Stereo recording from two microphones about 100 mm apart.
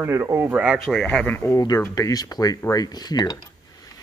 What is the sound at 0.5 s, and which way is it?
Speech, 15° right (ahead or behind).